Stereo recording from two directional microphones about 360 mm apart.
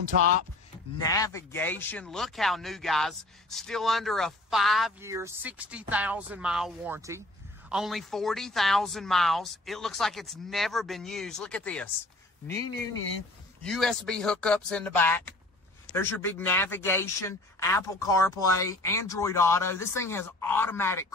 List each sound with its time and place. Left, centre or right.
0.1 s speech: right
1.1 s speech: centre
13.6 s speech: centre